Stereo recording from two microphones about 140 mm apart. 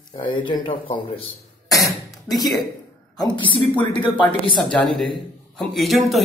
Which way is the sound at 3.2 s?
35° left (ahead or behind).